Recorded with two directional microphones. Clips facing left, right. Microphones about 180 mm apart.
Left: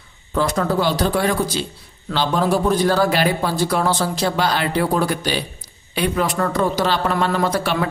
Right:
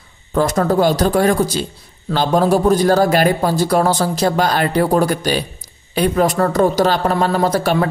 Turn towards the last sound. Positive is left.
turn(degrees=-40)  # may be behind; listen again after turning